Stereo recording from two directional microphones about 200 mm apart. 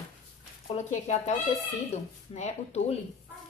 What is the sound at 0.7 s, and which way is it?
A woman's voice, 35° left (ahead or behind).